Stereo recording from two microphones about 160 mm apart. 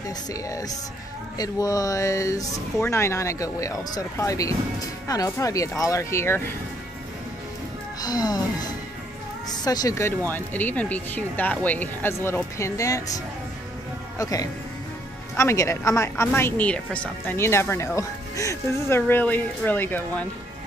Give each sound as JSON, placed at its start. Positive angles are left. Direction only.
{"t": 0.3, "sound": "speech", "side_deg": 20}
{"t": 8.0, "sound": "speech", "side_deg": 25}
{"t": 9.7, "sound": "speech", "side_deg": 20}